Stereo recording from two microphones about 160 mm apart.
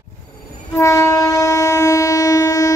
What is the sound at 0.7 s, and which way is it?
Train, 15° left (ahead or behind).